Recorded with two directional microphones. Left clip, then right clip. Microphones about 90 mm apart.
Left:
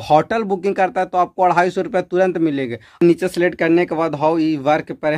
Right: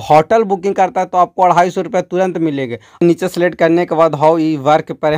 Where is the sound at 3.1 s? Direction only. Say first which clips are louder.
Right 2 dB; 50° right (ahead or behind).